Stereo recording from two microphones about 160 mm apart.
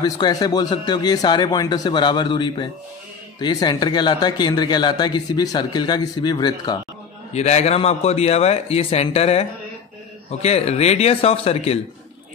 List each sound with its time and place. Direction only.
0.0 s speech: 25° left (ahead or behind)
7.3 s speech: 45° left (ahead or behind)